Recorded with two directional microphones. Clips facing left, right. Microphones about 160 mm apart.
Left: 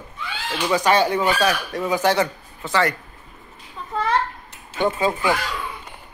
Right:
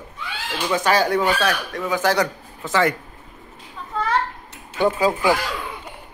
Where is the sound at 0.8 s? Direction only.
5° right (ahead or behind).